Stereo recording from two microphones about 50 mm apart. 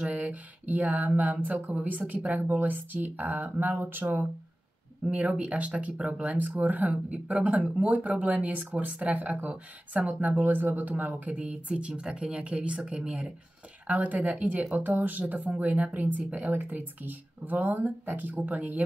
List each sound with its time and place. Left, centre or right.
0.0 s a sound: right
1.4 s speech: right
5.1 s speech: right
10.3 s speech: right
11.3 s speech: right
13.8 s speech: right